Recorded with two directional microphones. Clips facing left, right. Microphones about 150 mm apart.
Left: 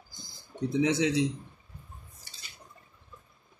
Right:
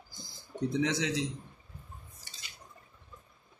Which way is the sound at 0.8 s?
15° left (ahead or behind).